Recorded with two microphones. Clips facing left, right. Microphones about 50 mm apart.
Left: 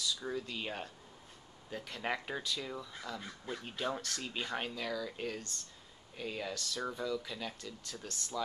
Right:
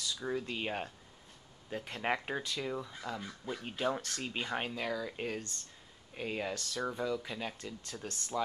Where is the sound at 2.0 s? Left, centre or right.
Right.